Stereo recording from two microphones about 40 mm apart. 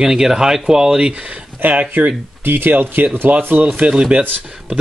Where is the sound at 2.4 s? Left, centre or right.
Right.